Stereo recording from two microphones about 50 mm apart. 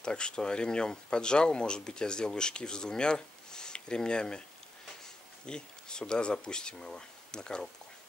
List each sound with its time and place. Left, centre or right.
0.0 s speech: centre